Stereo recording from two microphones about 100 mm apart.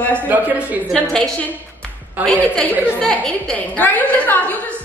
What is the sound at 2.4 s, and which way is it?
A woman's voice, 15° left (ahead or behind).